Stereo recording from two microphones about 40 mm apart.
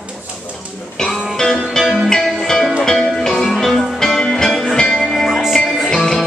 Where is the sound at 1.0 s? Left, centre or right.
Centre.